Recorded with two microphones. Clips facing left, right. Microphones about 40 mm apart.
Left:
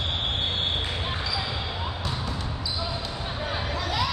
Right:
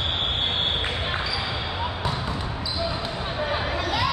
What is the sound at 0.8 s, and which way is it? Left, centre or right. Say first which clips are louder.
Basketball bounce: right 3 dB; right.